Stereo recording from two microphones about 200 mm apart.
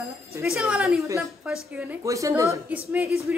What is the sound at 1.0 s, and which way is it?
A woman's voice, 15° right (ahead or behind).